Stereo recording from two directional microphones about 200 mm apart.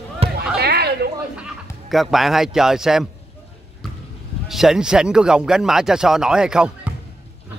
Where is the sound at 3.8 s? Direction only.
Centre (ahead or behind).